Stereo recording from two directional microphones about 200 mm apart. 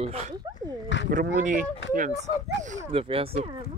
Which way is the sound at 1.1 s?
40° right (ahead or behind).